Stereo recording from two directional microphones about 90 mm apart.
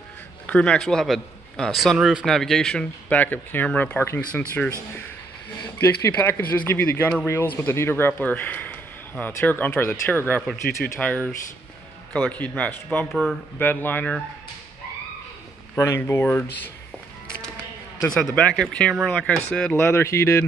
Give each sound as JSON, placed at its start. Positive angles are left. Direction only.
{"t": 0.5, "sound": "a man's voice", "side_deg": 10}
{"t": 2.2, "sound": "a man's voice", "side_deg": 5}
{"t": 3.1, "sound": "speech", "side_deg": 20}
{"t": 4.2, "sound": "speech", "side_deg": 15}
{"t": 5.8, "sound": "speech", "side_deg": 25}
{"t": 13.1, "sound": "a man's voice", "side_deg": 0}
{"t": 13.6, "sound": "speech", "side_deg": 20}
{"t": 15.7, "sound": "speech", "side_deg": 25}
{"t": 18.0, "sound": "speech", "side_deg": 10}
{"t": 19.8, "sound": "speech", "side_deg": 30}